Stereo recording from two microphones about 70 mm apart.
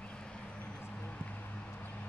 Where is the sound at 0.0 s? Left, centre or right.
Centre.